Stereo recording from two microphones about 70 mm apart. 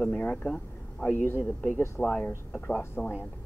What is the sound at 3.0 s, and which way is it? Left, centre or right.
Speech, left.